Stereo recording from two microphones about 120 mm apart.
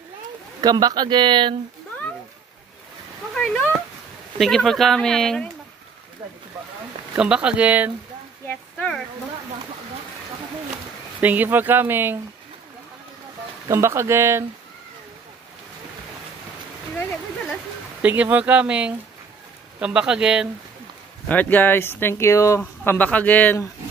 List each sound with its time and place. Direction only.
0.6 s speech: 35° right (ahead or behind)
3.3 s speech: 10° left (ahead or behind)
7.2 s speech: 10° right (ahead or behind)
8.5 s speech: 10° left (ahead or behind)
11.1 s speech: 15° right (ahead or behind)
13.7 s speech: 25° right (ahead or behind)
18.0 s speech: 15° right (ahead or behind)
21.3 s speech: 15° left (ahead or behind)
22.6 s speech: 10° left (ahead or behind)